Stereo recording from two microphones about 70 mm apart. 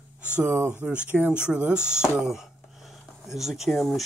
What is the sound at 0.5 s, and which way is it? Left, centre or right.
Speech, right.